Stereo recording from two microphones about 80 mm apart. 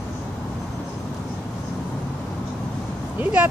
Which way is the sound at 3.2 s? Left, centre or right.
Centre.